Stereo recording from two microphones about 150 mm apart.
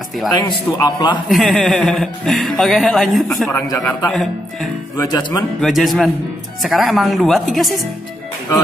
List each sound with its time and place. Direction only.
0.5 s a man's voice: 30° left (ahead or behind)
1.3 s speech: centre (ahead or behind)
3.5 s a man's voice: 20° left (ahead or behind)
4.1 s speech: centre (ahead or behind)
4.9 s a man's voice: 25° left (ahead or behind)
5.6 s speech: centre (ahead or behind)